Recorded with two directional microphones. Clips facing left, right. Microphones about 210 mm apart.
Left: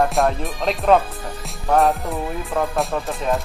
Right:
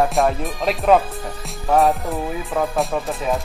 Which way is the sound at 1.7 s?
Centre (ahead or behind).